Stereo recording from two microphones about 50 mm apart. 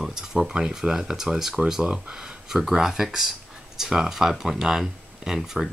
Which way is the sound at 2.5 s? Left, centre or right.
Centre.